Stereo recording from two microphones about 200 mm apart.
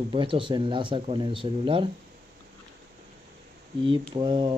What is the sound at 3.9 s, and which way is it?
Speech, 25° right (ahead or behind).